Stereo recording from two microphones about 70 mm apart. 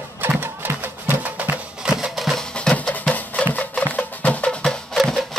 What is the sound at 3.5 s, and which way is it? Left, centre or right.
Music, left.